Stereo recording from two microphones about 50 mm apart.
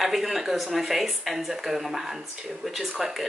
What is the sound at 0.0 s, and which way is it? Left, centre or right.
Speech, centre.